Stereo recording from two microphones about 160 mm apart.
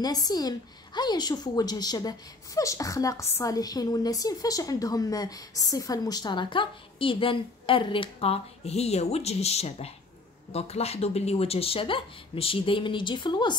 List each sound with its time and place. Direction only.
0.0 s a woman's voice: 25° left (ahead or behind)